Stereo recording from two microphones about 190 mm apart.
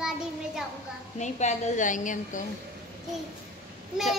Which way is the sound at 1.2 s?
40° left (ahead or behind).